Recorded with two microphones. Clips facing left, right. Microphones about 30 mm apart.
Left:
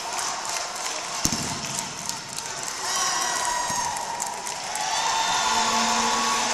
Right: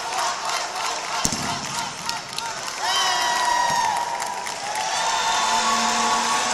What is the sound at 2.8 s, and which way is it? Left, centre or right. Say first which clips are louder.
Crowd: right 5 dB; right.